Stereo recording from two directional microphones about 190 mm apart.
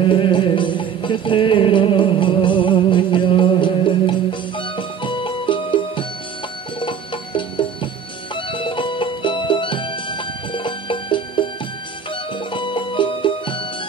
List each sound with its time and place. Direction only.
0.0 s music: 25° left (ahead or behind)
12.5 s music: 25° left (ahead or behind)